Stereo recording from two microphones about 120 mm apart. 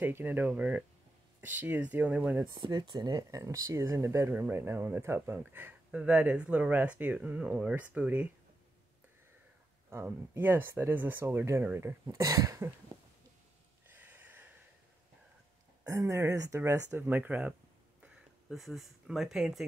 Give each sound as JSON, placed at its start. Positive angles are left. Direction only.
{"t": 0.0, "sound": "speech", "side_deg": -15}
{"t": 2.7, "sound": "speech", "side_deg": -35}
{"t": 9.8, "sound": "speech", "side_deg": -20}
{"t": 13.9, "sound": "a sound", "side_deg": -15}
{"t": 15.8, "sound": "speech", "side_deg": -25}